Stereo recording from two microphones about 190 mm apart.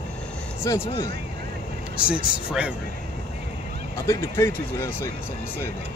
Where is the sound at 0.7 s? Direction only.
15° left (ahead or behind).